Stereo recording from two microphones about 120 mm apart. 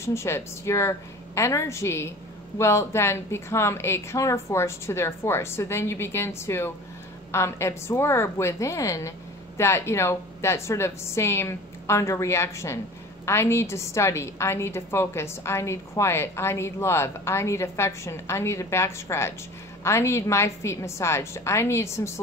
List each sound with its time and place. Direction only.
0.0 s a woman's voice: 25° left (ahead or behind)